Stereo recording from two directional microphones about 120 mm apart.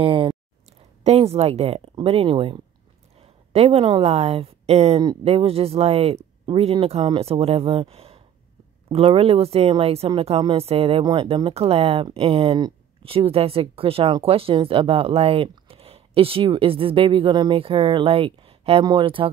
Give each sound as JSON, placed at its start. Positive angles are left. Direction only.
{"t": 0.0, "sound": "speech", "side_deg": -45}
{"t": 1.0, "sound": "a woman's voice", "side_deg": -60}
{"t": 3.2, "sound": "a sound", "side_deg": -55}
{"t": 4.0, "sound": "speech", "side_deg": -60}
{"t": 11.0, "sound": "speech", "side_deg": -45}